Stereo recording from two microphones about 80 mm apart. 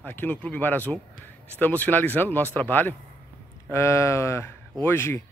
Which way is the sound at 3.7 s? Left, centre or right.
Left.